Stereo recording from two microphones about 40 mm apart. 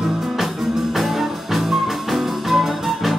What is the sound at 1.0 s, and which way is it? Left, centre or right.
Music, centre.